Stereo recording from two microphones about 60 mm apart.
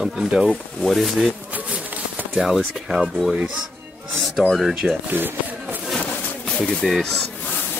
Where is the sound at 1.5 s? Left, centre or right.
Right.